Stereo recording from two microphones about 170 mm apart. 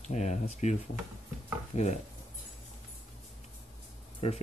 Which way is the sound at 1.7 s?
45° left (ahead or behind).